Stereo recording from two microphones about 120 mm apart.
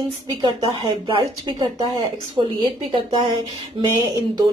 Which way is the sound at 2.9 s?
45° right (ahead or behind).